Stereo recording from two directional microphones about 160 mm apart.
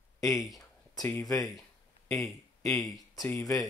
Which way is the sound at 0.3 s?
Centre (ahead or behind).